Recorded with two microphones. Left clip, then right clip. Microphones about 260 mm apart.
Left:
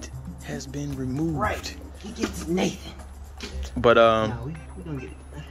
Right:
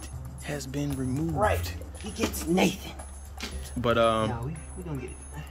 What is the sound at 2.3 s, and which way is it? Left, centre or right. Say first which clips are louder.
Speech: right 1 dB; right.